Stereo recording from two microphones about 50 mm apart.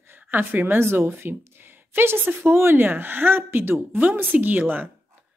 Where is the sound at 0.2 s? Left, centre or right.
Right.